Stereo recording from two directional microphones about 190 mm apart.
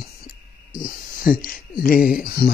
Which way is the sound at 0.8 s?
50° left (ahead or behind).